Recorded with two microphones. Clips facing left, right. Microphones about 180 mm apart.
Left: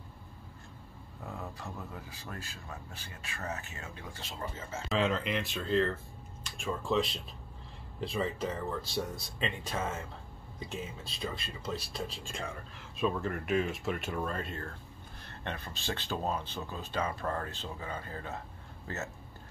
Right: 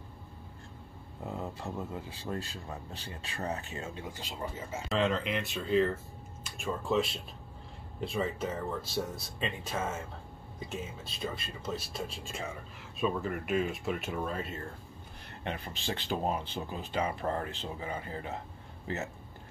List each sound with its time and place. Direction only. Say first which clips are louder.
1.2 s speech: right 4 dB; 25° right (ahead or behind)
4.8 s speech: right 1 dB; centre (ahead or behind)
15.4 s speech: right 2 dB; 15° right (ahead or behind)